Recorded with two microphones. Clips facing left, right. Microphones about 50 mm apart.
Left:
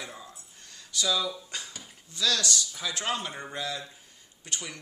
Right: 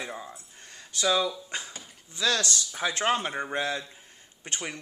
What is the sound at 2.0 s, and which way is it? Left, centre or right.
Speech, right.